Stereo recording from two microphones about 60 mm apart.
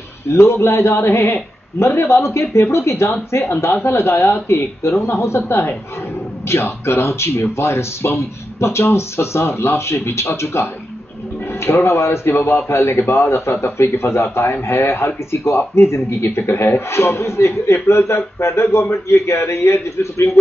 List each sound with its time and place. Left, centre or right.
0.3 s speech: left